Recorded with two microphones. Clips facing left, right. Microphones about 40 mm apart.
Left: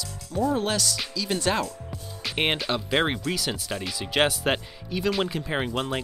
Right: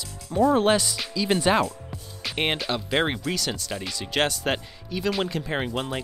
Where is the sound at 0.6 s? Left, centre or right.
Right.